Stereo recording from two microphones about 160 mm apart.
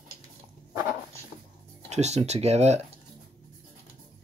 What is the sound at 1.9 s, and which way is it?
Speech, 45° right (ahead or behind).